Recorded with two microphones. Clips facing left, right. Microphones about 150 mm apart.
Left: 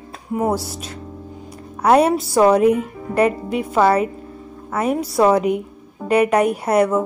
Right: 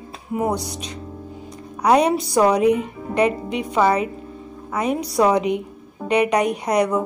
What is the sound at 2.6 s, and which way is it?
Speech, 50° left (ahead or behind).